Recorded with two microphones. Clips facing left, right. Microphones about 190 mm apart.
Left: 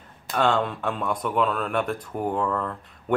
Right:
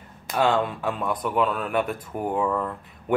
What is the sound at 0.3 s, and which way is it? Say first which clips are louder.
Speech: right 1 dB; 5° right (ahead or behind).